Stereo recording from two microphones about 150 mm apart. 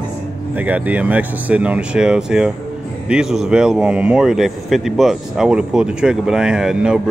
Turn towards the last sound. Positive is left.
turn(degrees=-5)  # may be behind; listen again after turning